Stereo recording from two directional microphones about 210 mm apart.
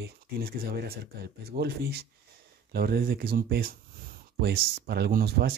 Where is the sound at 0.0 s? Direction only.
45° right (ahead or behind).